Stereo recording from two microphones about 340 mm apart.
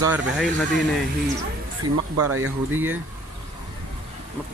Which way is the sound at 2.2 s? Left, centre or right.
Right.